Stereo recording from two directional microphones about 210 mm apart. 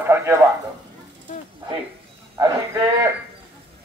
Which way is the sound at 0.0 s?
10° right (ahead or behind).